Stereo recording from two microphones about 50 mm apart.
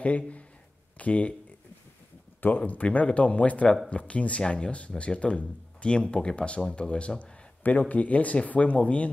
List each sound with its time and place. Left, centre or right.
0.9 s speech: left
2.4 s speech: left